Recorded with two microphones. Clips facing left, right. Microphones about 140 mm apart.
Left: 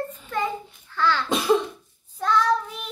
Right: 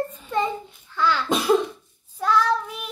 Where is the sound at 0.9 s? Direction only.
15° right (ahead or behind).